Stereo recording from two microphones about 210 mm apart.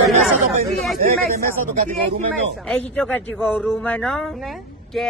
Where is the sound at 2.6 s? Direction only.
5° left (ahead or behind).